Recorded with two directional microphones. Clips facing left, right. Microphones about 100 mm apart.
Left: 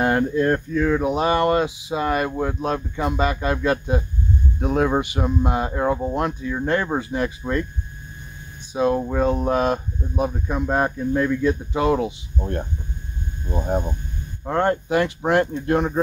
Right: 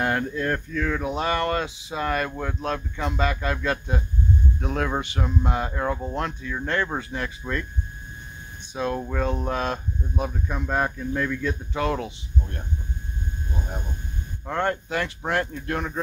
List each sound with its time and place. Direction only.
0.0 s speech: 20° left (ahead or behind)
8.7 s speech: 15° left (ahead or behind)
12.4 s speech: 45° left (ahead or behind)
14.4 s speech: 20° left (ahead or behind)